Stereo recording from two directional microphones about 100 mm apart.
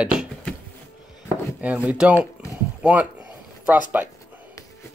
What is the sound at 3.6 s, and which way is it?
Chopping, 15° right (ahead or behind).